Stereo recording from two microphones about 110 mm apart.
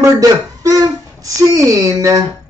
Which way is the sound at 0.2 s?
30° right (ahead or behind).